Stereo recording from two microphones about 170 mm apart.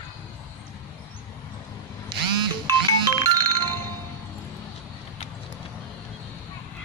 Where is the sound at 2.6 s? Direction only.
20° right (ahead or behind).